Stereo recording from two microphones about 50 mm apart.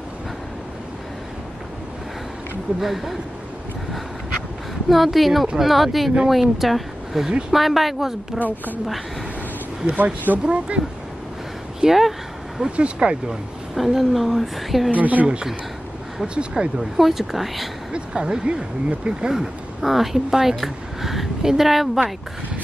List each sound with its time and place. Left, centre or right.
2.8 s speech: centre
4.8 s speech: centre
9.9 s speech: right
10.4 s speech: right
11.8 s speech: centre
13.7 s speech: centre
15.0 s speech: right
16.3 s speech: centre
17.9 s speech: centre
19.3 s speech: centre